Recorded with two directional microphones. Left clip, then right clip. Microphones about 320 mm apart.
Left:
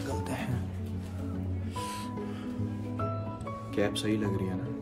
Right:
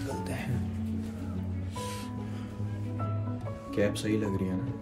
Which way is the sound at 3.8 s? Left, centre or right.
Centre.